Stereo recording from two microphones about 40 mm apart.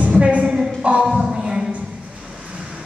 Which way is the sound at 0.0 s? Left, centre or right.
Right.